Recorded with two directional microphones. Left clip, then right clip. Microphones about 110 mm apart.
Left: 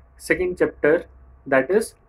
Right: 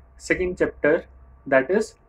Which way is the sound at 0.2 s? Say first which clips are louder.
Left 2 dB; 35° left (ahead or behind).